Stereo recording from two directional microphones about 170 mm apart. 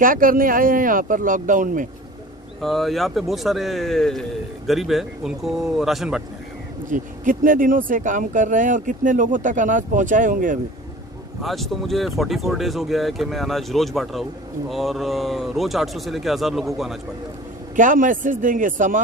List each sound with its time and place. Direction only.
0.0 s speech: 55° right (ahead or behind)
2.6 s a man's voice: centre (ahead or behind)
6.9 s speech: 50° right (ahead or behind)
11.4 s a man's voice: centre (ahead or behind)
17.7 s speech: 50° right (ahead or behind)